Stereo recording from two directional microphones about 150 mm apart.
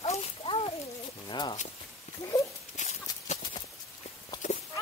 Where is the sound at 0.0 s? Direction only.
40° left (ahead or behind).